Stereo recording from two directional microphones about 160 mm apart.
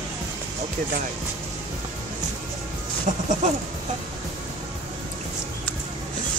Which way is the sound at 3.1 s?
55° right (ahead or behind).